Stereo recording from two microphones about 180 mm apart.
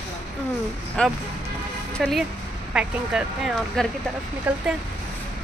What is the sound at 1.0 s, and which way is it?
Speech, 5° left (ahead or behind).